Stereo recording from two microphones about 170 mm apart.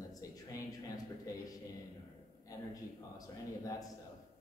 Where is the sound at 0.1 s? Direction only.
20° left (ahead or behind).